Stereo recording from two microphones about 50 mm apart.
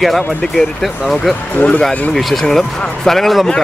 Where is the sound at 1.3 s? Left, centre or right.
Left.